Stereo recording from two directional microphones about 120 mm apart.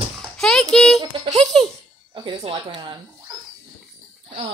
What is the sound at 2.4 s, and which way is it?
Speech, 50° right (ahead or behind).